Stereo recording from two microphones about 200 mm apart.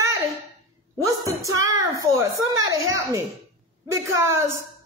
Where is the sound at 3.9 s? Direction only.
15° right (ahead or behind).